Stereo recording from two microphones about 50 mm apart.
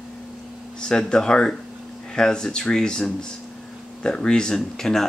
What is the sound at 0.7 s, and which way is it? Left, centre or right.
Speech, centre.